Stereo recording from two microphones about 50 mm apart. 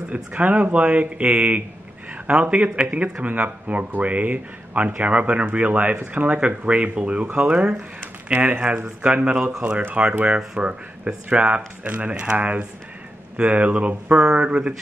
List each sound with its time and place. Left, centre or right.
0.1 s speech: right
9.0 s speech: right